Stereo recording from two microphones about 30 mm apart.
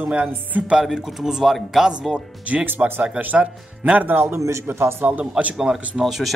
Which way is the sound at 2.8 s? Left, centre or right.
Right.